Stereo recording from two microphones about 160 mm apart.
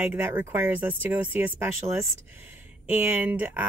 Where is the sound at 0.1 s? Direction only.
10° right (ahead or behind).